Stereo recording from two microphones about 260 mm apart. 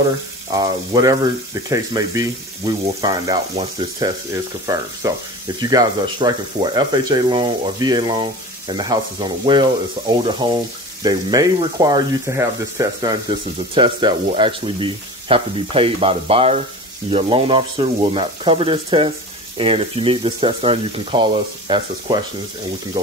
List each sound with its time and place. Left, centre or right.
0.5 s speech: centre